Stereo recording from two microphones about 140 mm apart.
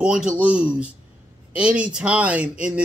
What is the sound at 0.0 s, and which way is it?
A man's voice, 5° right (ahead or behind).